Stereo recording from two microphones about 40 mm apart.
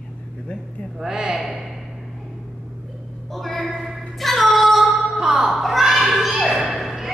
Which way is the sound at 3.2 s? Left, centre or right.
Centre.